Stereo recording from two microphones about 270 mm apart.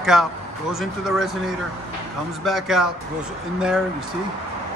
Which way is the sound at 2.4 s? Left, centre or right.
Centre.